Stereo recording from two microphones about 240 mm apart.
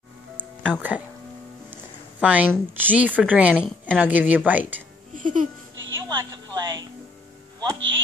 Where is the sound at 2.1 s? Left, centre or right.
Centre.